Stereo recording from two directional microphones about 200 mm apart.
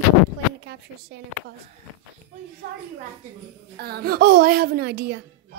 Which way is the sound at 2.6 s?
55° right (ahead or behind).